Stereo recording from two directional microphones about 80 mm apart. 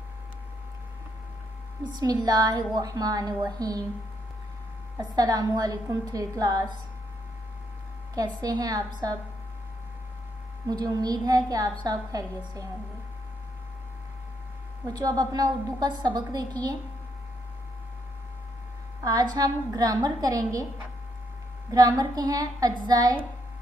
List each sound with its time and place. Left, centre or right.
1.8 s a woman's voice: right
4.9 s a woman's voice: right
8.1 s a woman's voice: right
10.7 s a woman's voice: right
14.9 s a woman's voice: right
19.0 s a woman's voice: right
21.6 s a woman's voice: right